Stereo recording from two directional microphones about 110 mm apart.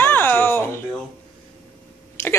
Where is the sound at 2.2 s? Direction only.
20° left (ahead or behind).